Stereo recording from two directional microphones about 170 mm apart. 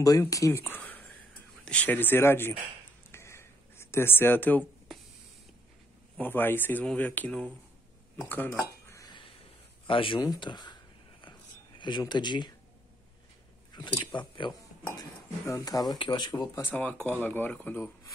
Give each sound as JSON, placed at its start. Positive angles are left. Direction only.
{"t": 0.0, "sound": "speech", "side_deg": 20}
{"t": 3.1, "sound": "a sound", "side_deg": 15}
{"t": 6.1, "sound": "speech", "side_deg": 10}
{"t": 8.2, "sound": "dishes", "side_deg": 10}
{"t": 9.8, "sound": "a sound", "side_deg": 30}
{"t": 11.8, "sound": "speech", "side_deg": 25}
{"t": 13.7, "sound": "speech", "side_deg": 25}
{"t": 14.9, "sound": "speech", "side_deg": 15}
{"t": 16.6, "sound": "speech", "side_deg": 10}